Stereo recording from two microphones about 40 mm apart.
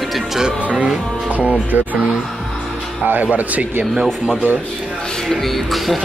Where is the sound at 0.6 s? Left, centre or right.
Right.